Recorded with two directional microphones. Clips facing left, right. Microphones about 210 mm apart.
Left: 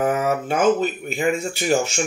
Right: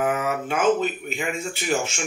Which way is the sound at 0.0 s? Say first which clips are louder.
Left 3 dB; 40° left (ahead or behind).